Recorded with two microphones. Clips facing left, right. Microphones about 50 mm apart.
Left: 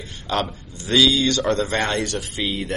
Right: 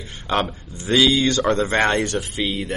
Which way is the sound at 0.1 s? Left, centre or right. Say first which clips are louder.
Right 2 dB; right.